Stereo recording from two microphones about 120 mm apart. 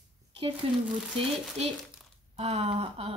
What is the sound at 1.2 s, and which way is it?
Speech, 50° right (ahead or behind).